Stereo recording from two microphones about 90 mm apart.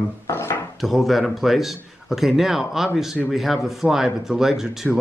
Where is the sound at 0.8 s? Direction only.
Centre (ahead or behind).